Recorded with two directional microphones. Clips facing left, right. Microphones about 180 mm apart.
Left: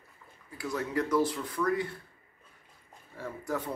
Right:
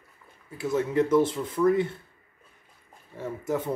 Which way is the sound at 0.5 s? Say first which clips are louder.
Right 7 dB; 25° right (ahead or behind).